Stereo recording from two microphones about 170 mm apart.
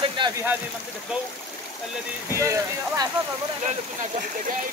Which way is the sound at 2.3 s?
20° right (ahead or behind).